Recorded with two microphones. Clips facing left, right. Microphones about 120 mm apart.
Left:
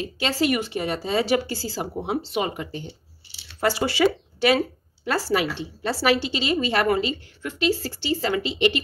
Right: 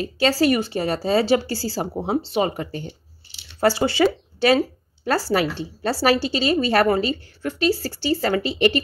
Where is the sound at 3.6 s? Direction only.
30° right (ahead or behind).